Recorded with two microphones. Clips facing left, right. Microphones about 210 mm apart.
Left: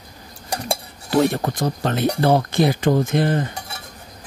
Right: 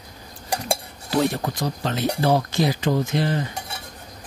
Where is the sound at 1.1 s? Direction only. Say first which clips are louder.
Left 4 dB; 50° left (ahead or behind).